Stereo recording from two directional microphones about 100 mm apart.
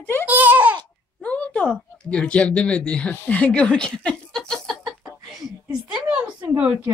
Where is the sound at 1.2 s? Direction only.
15° left (ahead or behind); by 6.5 s 10° right (ahead or behind).